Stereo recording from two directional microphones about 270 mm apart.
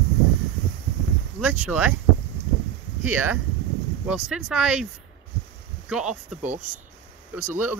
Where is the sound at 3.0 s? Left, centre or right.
Centre.